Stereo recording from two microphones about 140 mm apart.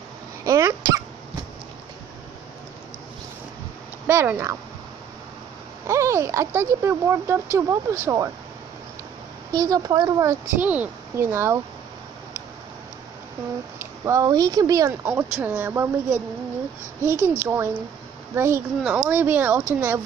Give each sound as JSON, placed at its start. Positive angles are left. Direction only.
{"t": 0.4, "sound": "cough", "side_deg": -20}
{"t": 4.1, "sound": "speech", "side_deg": -20}
{"t": 5.9, "sound": "speech", "side_deg": -20}
{"t": 9.5, "sound": "speech", "side_deg": -25}
{"t": 10.6, "sound": "speech", "side_deg": -10}
{"t": 13.7, "sound": "speech", "side_deg": -20}
{"t": 14.9, "sound": "speech", "side_deg": -15}